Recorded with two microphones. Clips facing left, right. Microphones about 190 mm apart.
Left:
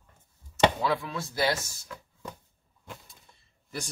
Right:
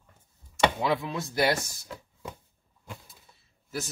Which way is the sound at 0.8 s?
20° right (ahead or behind).